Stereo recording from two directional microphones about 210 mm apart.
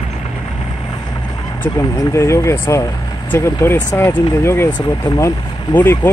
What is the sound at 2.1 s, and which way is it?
Speech, 15° left (ahead or behind).